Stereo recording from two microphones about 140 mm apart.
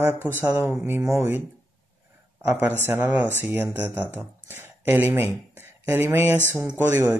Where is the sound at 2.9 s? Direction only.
10° right (ahead or behind).